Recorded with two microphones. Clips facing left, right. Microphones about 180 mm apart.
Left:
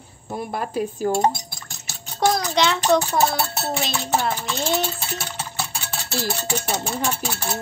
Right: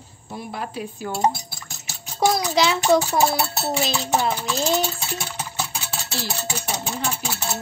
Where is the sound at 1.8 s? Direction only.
5° right (ahead or behind).